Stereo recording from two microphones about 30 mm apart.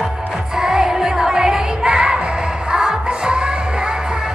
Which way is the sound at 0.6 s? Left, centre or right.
Right.